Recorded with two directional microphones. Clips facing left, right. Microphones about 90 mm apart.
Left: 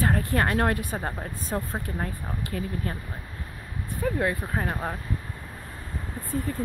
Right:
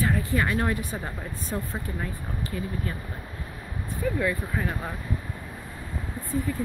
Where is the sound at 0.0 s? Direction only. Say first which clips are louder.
Left 1 dB; 50° left (ahead or behind).